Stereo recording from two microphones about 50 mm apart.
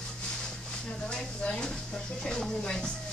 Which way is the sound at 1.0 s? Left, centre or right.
Centre.